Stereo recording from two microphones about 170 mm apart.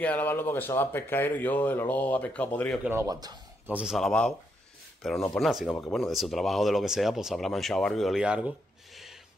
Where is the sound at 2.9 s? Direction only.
20° right (ahead or behind).